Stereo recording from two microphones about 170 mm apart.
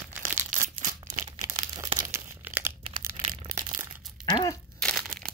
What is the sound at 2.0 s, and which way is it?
Tearing, 15° right (ahead or behind).